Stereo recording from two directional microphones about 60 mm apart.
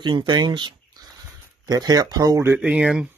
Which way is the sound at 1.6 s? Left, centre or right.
Right.